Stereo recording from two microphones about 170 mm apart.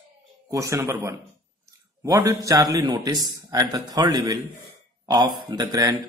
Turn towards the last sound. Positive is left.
turn(degrees=-25)  # may be behind; listen again after turning